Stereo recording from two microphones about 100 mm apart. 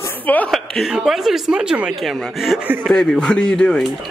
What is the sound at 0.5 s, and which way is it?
A woman's voice, centre (ahead or behind).